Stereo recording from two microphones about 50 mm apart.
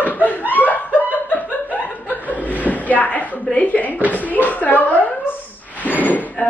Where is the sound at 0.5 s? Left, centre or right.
Left.